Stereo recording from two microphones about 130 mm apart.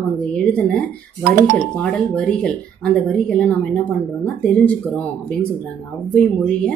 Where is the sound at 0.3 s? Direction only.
10° left (ahead or behind).